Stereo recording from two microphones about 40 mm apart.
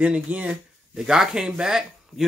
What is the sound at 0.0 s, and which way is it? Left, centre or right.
Speech, right.